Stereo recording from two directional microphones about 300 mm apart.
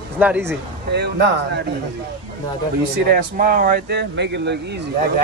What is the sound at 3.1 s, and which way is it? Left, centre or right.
Speech, right.